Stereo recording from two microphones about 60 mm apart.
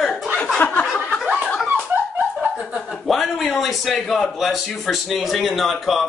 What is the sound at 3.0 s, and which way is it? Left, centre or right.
Speech, centre.